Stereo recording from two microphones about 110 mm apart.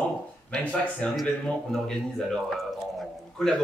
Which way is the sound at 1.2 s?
5° left (ahead or behind).